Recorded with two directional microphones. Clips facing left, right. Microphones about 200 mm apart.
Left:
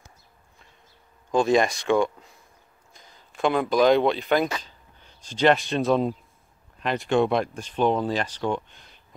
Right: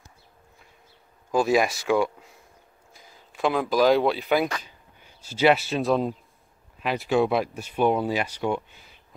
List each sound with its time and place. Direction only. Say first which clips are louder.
1.3 s speech: left 1 dB; 5° right (ahead or behind)